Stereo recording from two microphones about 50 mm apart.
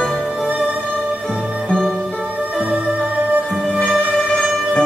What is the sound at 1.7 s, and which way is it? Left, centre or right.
Music, centre.